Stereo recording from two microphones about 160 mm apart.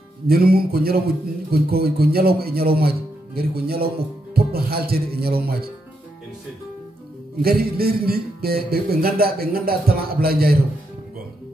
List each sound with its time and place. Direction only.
0.3 s speech: 70° right (ahead or behind)
7.4 s speech: 70° right (ahead or behind)